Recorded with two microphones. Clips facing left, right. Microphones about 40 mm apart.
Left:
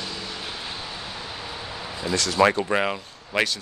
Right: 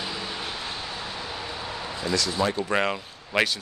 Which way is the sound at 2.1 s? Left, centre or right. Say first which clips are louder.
Left 7 dB; left.